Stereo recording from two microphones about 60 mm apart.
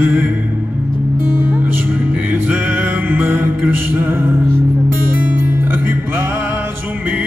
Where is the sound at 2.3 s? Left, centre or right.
Right.